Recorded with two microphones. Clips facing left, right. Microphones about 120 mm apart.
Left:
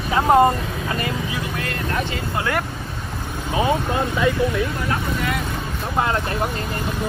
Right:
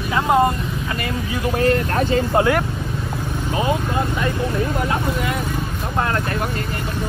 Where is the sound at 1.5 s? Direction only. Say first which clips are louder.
Right 10 dB; 35° right (ahead or behind).